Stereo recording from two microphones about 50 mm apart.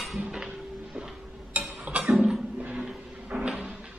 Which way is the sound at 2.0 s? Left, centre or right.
Centre.